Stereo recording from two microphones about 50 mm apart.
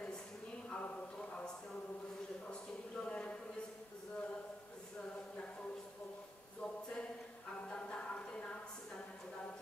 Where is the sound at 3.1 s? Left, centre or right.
Left.